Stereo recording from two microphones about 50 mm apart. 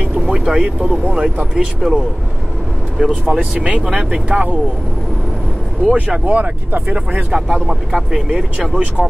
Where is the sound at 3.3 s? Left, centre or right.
Right.